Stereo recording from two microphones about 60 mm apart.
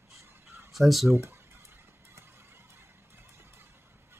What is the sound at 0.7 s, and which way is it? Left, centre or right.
Speech, centre.